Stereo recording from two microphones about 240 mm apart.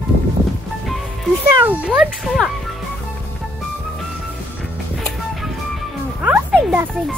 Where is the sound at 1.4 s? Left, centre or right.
Centre.